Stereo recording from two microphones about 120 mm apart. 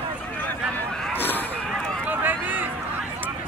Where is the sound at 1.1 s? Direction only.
15° left (ahead or behind).